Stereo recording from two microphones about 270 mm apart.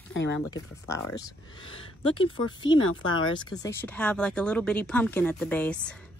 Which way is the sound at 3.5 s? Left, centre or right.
Centre.